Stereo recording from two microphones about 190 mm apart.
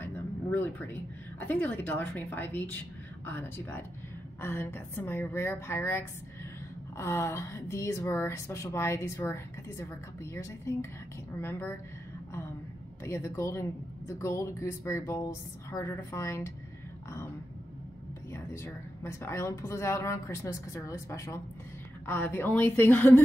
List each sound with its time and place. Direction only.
0.0 s a sound: 10° left (ahead or behind)
1.4 s a woman's voice: 10° left (ahead or behind)
13.0 s a woman's voice: 15° left (ahead or behind)
18.6 s a woman's voice: 15° left (ahead or behind)